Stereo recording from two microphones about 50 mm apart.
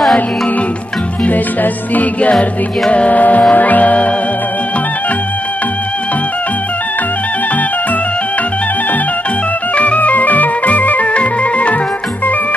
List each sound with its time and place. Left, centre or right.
1.2 s music: left
9.8 s music: left